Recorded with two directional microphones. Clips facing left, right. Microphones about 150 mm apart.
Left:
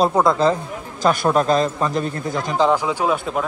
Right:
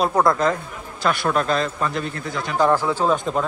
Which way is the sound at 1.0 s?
40° left (ahead or behind).